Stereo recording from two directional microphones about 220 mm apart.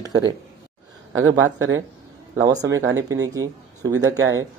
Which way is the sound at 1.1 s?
65° right (ahead or behind).